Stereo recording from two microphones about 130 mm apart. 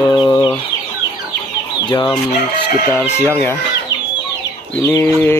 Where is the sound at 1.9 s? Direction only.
30° left (ahead or behind).